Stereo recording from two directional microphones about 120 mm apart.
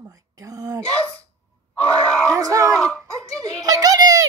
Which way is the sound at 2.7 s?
5° left (ahead or behind).